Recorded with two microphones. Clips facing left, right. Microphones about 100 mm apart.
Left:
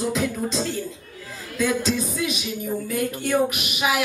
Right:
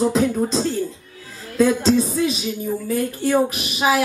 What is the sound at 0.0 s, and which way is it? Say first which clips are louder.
Speech: right 6 dB; 35° right (ahead or behind).